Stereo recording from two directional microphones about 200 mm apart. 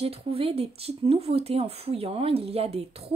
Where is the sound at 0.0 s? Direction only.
30° right (ahead or behind).